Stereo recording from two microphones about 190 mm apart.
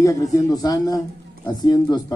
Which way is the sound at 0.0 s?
15° left (ahead or behind).